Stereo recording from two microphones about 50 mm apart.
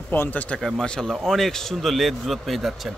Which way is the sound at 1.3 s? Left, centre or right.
Centre.